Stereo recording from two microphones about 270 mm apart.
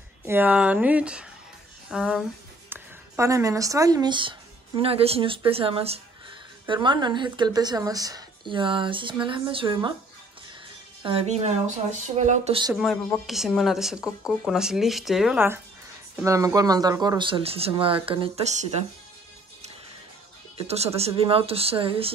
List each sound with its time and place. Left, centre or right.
0.2 s a woman's voice: centre
11.0 s speech: centre
12.7 s speech: centre; by 18.9 s right
20.5 s speech: right